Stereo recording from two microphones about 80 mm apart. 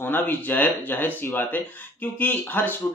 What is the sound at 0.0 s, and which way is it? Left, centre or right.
Speech, left.